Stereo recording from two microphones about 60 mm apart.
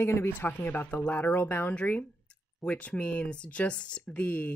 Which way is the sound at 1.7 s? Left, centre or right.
Left.